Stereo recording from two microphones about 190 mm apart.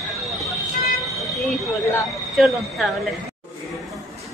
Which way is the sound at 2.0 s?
Centre (ahead or behind).